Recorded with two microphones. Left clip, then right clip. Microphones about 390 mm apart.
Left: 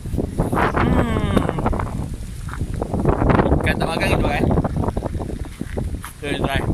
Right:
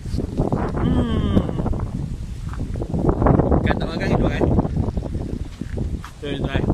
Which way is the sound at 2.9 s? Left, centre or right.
Left.